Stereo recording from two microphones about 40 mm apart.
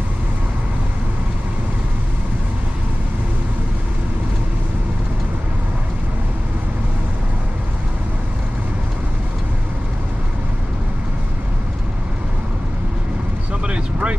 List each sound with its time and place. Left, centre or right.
13.7 s vehicle: right